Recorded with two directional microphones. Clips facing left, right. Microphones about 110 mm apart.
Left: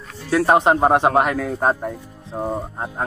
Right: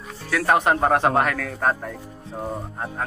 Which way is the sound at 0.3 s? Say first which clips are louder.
Left 4 dB; 25° left (ahead or behind).